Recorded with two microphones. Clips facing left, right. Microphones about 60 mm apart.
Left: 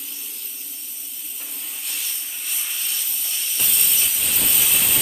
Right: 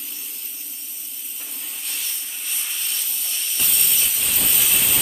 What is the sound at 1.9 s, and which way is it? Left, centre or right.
Steam, centre.